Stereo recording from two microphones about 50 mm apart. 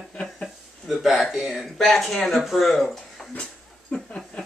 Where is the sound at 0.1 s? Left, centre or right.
Centre.